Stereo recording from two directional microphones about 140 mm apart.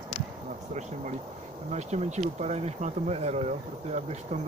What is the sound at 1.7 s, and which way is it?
Speech, 55° right (ahead or behind).